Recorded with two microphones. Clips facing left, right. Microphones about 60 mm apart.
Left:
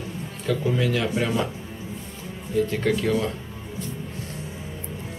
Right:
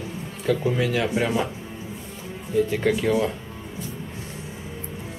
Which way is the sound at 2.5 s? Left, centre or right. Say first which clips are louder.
Right 1 dB; centre.